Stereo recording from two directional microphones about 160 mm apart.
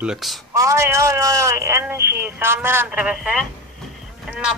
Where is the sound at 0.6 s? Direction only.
20° right (ahead or behind).